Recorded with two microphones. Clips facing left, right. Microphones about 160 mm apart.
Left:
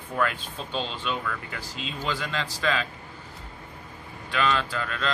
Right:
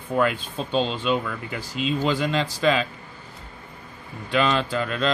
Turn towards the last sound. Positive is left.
turn(degrees=-20)  # may be behind; listen again after turning